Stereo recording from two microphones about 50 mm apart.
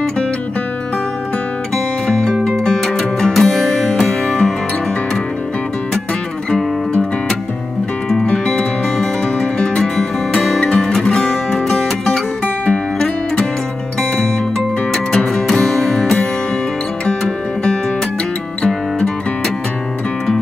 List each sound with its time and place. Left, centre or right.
2.0 s music: centre
6.5 s music: centre
8.9 s music: centre
9.6 s guitar: centre
15.1 s music: centre